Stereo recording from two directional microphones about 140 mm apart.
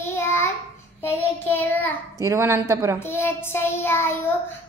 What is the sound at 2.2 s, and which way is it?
Speech, 20° right (ahead or behind).